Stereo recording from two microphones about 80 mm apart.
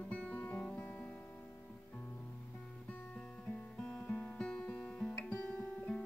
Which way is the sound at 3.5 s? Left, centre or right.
Centre.